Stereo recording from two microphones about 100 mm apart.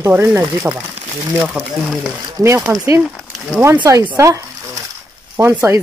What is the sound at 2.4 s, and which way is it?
Speech, 35° right (ahead or behind).